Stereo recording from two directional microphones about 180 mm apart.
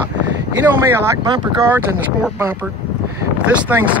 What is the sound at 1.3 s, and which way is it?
Speech, 15° right (ahead or behind).